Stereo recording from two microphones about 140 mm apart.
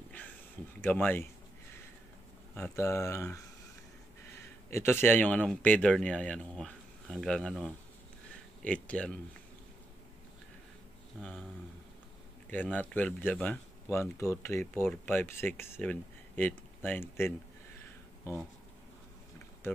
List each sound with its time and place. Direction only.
0.7 s speech: 15° left (ahead or behind)
2.5 s speech: 15° left (ahead or behind)
4.6 s speech: 15° left (ahead or behind)
12.4 s speech: 15° left (ahead or behind)